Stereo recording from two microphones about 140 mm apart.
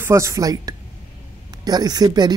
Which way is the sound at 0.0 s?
20° right (ahead or behind).